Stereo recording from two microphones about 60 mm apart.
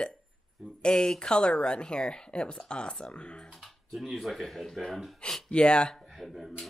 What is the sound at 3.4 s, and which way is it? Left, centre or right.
Speech, centre.